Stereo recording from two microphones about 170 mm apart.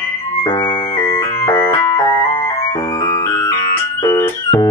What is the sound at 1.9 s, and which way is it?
Music, 30° left (ahead or behind).